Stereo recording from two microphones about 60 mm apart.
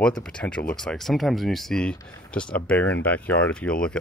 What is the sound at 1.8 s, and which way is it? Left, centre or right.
Speech, centre.